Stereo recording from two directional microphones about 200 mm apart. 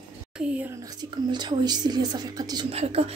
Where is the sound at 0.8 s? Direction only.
20° right (ahead or behind).